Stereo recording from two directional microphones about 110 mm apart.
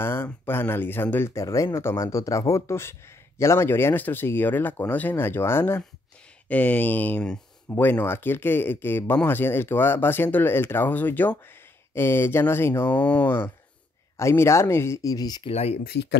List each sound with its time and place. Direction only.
0.0 s speech: 20° left (ahead or behind)
1.3 s speech: 30° left (ahead or behind)
15.4 s speech: 70° left (ahead or behind)